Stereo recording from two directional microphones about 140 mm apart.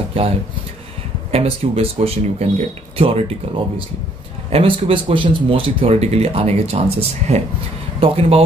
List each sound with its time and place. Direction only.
0.2 s speech: 40° right (ahead or behind)